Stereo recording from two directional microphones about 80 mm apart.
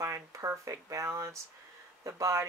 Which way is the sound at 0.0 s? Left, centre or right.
Right.